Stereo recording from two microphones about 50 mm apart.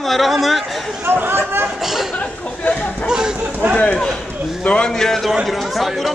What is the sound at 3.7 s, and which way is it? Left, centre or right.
Run, left.